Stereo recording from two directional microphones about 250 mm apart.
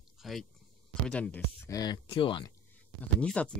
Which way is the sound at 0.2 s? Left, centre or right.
Centre.